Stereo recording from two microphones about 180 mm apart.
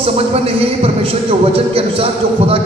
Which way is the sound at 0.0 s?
30° right (ahead or behind).